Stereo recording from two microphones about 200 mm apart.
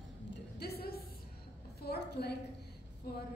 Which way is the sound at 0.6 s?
50° left (ahead or behind).